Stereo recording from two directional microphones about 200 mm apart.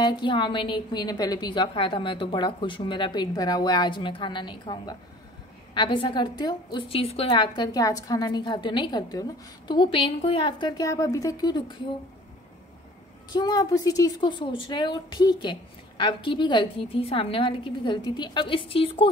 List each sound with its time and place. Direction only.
0.0 s a woman's voice: 20° left (ahead or behind)
13.3 s a woman's voice: 20° left (ahead or behind)